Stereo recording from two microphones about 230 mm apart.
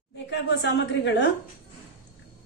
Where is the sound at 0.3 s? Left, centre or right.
Left.